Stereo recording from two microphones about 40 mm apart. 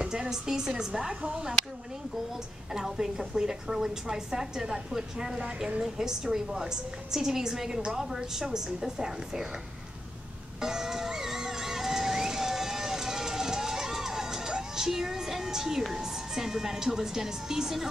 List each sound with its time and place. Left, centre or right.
0.0 s a woman's voice: centre
2.7 s a woman's voice: centre
10.6 s music: centre
15.9 s a woman's voice: centre